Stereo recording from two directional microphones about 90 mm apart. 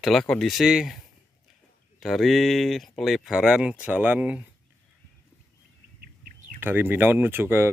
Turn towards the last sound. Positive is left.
turn(degrees=-25)  # may be behind; listen again after turning